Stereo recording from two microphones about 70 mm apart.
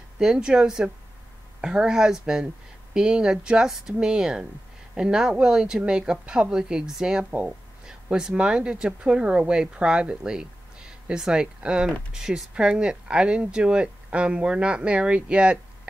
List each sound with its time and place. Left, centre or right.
0.2 s speech: centre